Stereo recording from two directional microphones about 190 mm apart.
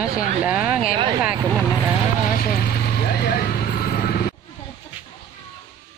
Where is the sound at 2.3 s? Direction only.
55° left (ahead or behind).